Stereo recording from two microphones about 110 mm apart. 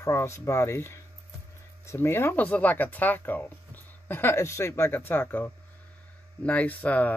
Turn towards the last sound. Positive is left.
turn(degrees=15)  # may be behind; listen again after turning